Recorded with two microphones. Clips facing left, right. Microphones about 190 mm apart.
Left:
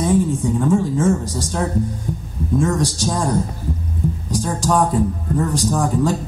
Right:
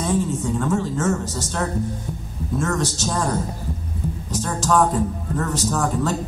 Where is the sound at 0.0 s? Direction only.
10° left (ahead or behind).